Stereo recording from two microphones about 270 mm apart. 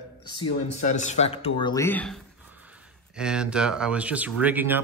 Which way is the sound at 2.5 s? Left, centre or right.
Centre.